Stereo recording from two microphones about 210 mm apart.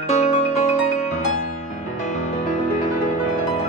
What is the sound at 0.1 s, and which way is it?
Music, 30° left (ahead or behind).